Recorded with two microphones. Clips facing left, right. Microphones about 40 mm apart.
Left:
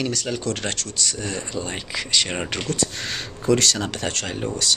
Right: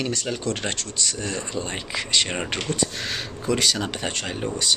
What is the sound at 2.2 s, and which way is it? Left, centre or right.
Speech, centre.